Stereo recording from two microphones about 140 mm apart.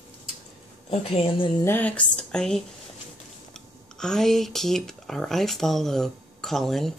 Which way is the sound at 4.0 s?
5° left (ahead or behind).